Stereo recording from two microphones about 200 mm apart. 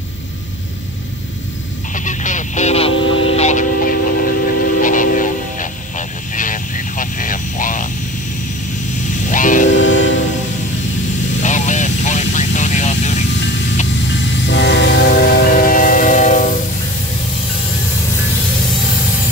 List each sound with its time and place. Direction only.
2.0 s a sound: 40° left (ahead or behind)
2.9 s vehicle: 85° left
3.3 s music: 35° left (ahead or behind)
9.3 s train: 40° left (ahead or behind)
9.7 s train: 65° left (ahead or behind)
11.4 s vehicle: 35° left (ahead or behind)
14.4 s train: 60° left (ahead or behind); by 16.5 s 40° left (ahead or behind)